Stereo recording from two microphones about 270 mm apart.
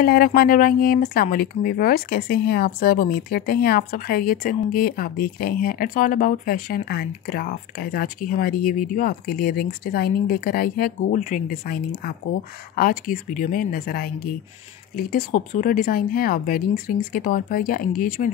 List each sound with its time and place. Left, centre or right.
0.0 s speech: left